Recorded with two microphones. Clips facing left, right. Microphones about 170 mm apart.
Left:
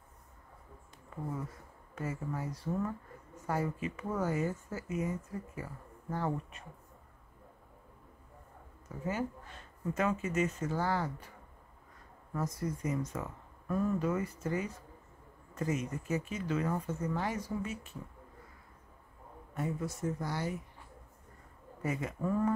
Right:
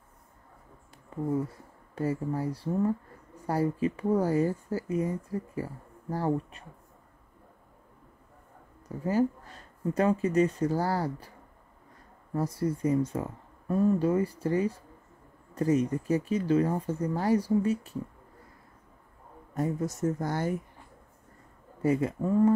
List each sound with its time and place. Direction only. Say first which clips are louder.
2.0 s speech: right 8 dB; 35° right (ahead or behind)
8.8 s speech: right 9 dB; 35° right (ahead or behind)
12.4 s speech: right 7 dB; 30° right (ahead or behind)
19.5 s speech: right 6 dB; 40° right (ahead or behind)
21.8 s speech: right 8 dB; 30° right (ahead or behind)